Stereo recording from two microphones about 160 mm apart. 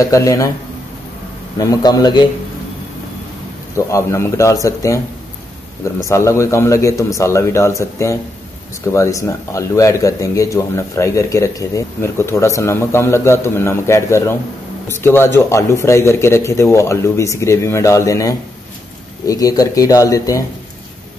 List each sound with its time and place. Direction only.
0.0 s a man's voice: 20° left (ahead or behind)
1.6 s a man's voice: 25° left (ahead or behind)
3.7 s a man's voice: 20° left (ahead or behind)
6.0 s a man's voice: 20° left (ahead or behind)